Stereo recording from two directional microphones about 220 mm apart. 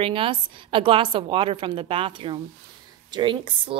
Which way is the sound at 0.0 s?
25° right (ahead or behind).